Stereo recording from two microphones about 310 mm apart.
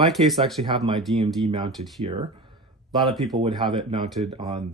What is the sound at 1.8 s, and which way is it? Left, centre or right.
Speech, right.